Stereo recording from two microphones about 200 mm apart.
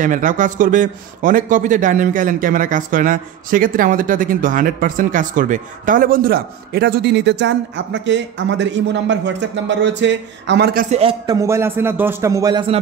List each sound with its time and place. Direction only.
0.0 s a man's voice: 40° right (ahead or behind)
11.0 s a man's voice: 25° right (ahead or behind)
11.3 s a man's voice: 15° right (ahead or behind)